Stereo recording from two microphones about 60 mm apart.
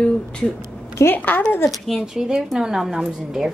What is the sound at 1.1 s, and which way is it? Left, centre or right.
Speech, left.